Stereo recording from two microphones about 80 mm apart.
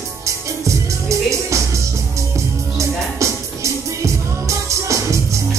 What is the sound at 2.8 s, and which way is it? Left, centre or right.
Music, right.